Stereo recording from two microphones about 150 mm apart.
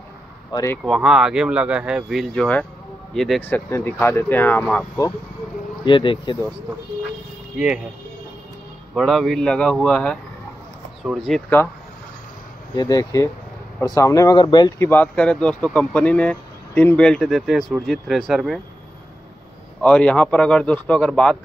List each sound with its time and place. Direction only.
0.5 s speech: 25° left (ahead or behind)
0.8 s speech: centre (ahead or behind)
3.4 s speech: 15° left (ahead or behind)
5.9 s speech: 35° left (ahead or behind)
7.5 s speech: 5° right (ahead or behind)
8.9 s speech: centre (ahead or behind)
12.7 s speech: 25° left (ahead or behind)
14.8 s speech: 15° left (ahead or behind)
19.8 s speech: 10° left (ahead or behind)